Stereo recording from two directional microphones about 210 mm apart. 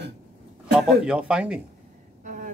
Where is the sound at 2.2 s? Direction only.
40° right (ahead or behind).